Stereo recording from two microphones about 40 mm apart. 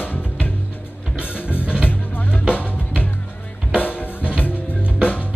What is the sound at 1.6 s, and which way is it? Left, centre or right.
Music, right.